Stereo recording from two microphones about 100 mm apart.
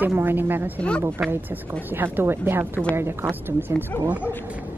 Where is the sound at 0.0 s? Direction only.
20° right (ahead or behind).